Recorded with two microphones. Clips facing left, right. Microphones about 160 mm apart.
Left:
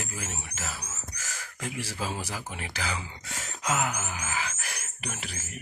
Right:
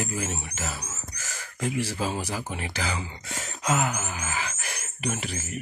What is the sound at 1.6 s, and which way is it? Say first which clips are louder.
Speech: right 8 dB; 15° right (ahead or behind).